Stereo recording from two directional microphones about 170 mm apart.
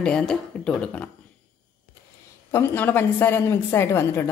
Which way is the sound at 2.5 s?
15° left (ahead or behind).